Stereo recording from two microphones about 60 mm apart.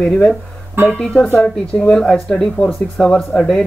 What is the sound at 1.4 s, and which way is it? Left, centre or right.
Speech, centre.